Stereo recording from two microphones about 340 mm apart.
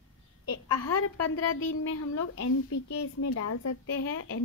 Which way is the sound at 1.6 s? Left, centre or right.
Left.